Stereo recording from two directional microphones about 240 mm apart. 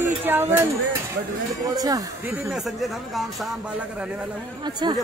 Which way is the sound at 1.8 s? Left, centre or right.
Centre.